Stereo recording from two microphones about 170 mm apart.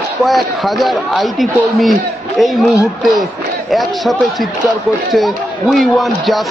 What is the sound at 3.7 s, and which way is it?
A man's voice, centre (ahead or behind).